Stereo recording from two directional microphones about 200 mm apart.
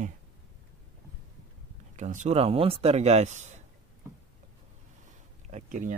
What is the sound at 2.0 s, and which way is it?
Speech, 40° right (ahead or behind).